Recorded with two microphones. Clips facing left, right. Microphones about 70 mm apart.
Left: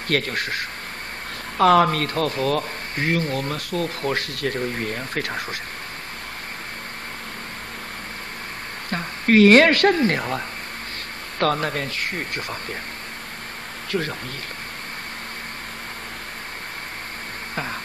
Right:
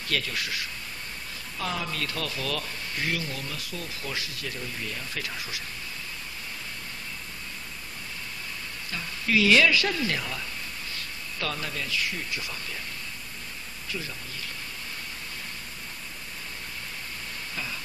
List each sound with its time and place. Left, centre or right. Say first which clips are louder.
0.1 s speech: left 7 dB; left
1.6 s speech: left 16 dB; left
8.9 s speech: left 9 dB; left
13.8 s speech: left 11 dB; left